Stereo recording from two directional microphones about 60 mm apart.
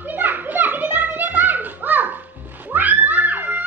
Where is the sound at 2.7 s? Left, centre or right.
Right.